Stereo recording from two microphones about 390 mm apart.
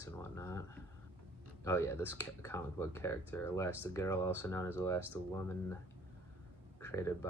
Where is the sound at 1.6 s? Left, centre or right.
Centre.